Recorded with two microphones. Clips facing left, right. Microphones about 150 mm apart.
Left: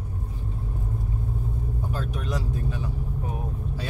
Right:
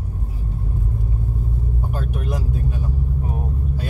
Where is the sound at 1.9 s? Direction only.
55° right (ahead or behind).